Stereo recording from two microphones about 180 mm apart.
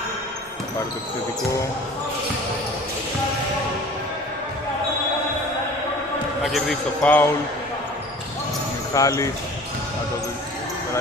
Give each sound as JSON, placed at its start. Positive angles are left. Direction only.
{"t": 6.4, "sound": "a man's voice", "side_deg": 0}
{"t": 8.9, "sound": "speech", "side_deg": 20}